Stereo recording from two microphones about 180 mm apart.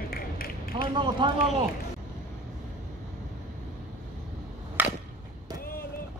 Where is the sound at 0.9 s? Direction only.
25° right (ahead or behind).